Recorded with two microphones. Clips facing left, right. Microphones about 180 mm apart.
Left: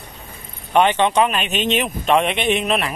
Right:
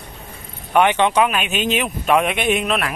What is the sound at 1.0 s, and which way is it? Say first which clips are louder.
Speech: even; 10° right (ahead or behind).